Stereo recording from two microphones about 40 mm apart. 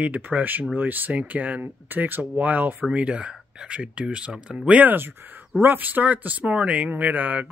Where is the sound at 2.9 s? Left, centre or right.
Right.